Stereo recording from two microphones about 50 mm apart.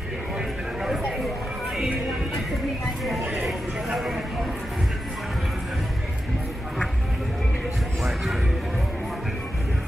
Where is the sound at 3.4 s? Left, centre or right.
Centre.